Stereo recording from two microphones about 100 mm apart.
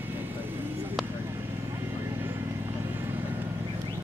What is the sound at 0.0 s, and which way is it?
Vehicle, 20° right (ahead or behind).